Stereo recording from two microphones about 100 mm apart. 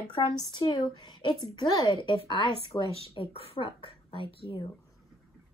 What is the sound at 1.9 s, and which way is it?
Speech, 55° left (ahead or behind).